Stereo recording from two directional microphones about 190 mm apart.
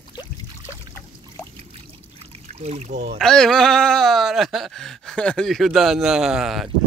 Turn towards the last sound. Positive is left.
turn(degrees=0)  # may be behind; listen again after turning